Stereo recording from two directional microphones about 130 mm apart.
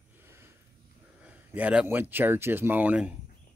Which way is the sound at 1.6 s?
10° right (ahead or behind).